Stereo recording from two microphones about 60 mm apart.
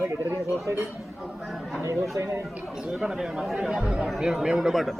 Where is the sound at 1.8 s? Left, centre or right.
Right.